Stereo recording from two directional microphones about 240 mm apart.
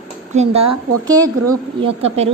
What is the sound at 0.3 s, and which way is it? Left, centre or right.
A woman's voice, right.